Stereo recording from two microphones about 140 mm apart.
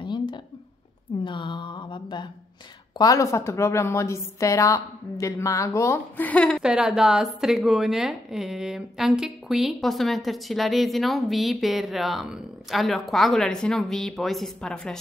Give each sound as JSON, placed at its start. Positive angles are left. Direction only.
{"t": 0.0, "sound": "a sound", "side_deg": 35}
{"t": 3.0, "sound": "a woman's voice", "side_deg": 25}
{"t": 6.6, "sound": "a woman's voice", "side_deg": -5}